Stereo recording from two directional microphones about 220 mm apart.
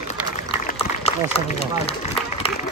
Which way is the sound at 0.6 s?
25° left (ahead or behind).